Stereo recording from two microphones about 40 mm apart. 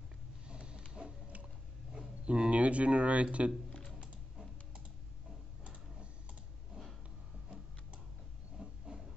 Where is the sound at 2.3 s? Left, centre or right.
Right.